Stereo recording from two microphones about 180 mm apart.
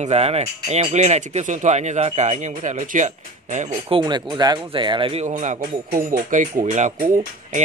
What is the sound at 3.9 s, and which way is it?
Speech, 25° right (ahead or behind).